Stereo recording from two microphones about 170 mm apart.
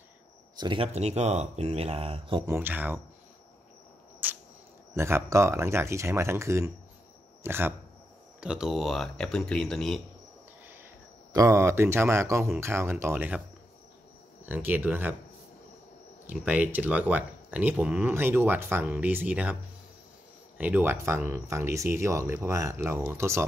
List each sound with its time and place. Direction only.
0.6 s speech: 30° right (ahead or behind)
2.4 s speech: 15° right (ahead or behind)
4.2 s cricket: 10° right (ahead or behind)
4.9 s speech: 15° right (ahead or behind); by 10.0 s centre (ahead or behind)
11.3 s speech: 15° right (ahead or behind)
14.4 s speech: 10° right (ahead or behind)
16.3 s speech: 10° right (ahead or behind)
20.5 s speech: 10° right (ahead or behind)